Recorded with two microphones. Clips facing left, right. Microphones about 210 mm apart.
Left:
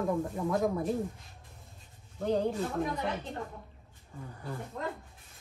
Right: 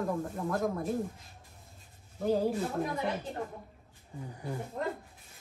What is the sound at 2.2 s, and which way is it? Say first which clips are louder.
Speech: right 1 dB; 5° right (ahead or behind).